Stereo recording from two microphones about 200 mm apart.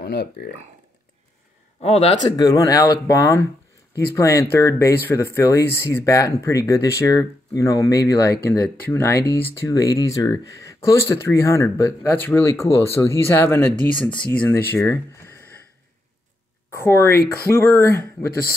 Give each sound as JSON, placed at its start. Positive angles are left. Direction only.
{"t": 0.0, "sound": "speech", "side_deg": 55}
{"t": 1.8, "sound": "speech", "side_deg": 30}
{"t": 2.2, "sound": "speech", "side_deg": 20}
{"t": 16.7, "sound": "speech", "side_deg": 15}